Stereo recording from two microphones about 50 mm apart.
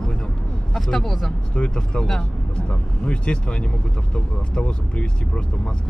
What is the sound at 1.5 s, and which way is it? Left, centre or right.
Speech, left.